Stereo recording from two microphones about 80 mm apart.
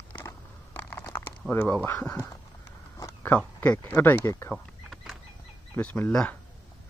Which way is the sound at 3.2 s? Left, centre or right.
Centre.